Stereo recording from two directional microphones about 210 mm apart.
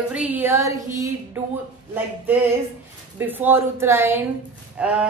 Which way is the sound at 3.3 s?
10° right (ahead or behind).